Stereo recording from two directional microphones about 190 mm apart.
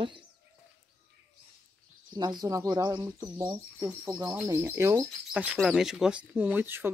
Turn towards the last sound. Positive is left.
turn(degrees=-10)  # may be behind; listen again after turning